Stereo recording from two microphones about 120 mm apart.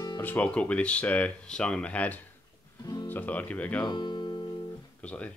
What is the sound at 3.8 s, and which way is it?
Music, 40° left (ahead or behind).